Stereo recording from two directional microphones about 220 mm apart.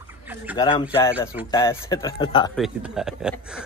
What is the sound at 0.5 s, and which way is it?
Speech, 20° left (ahead or behind).